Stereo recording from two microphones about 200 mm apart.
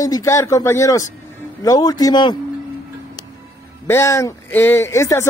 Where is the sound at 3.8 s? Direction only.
10° left (ahead or behind).